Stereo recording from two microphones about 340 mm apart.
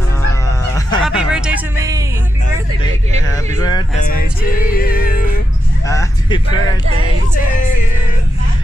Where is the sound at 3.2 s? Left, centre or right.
Centre.